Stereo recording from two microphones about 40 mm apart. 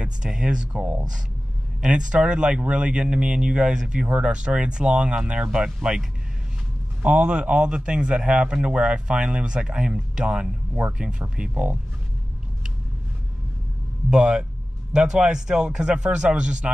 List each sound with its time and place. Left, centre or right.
0.0 s a man's voice: right
1.9 s a man's voice: right
7.0 s a man's voice: right
14.1 s a man's voice: centre